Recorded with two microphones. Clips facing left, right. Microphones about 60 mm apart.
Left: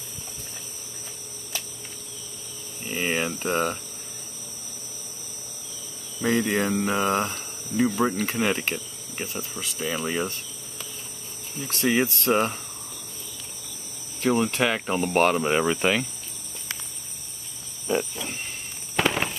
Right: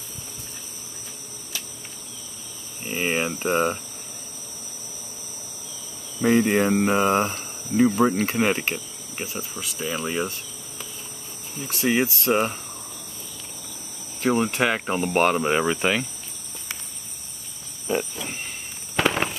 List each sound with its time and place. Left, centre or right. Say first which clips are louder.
2.8 s speech: right 2 dB; centre
6.2 s speech: right 4 dB; right
9.2 s speech: right 1 dB; centre
14.2 s speech: right 1 dB; centre
17.8 s cricket: even; centre
18.9 s a sound: right 2 dB; centre